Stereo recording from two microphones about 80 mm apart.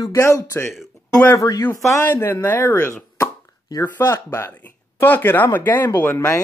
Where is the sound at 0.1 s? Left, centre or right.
Left.